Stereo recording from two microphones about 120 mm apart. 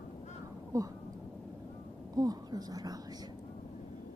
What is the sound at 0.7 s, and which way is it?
Speech, 25° right (ahead or behind).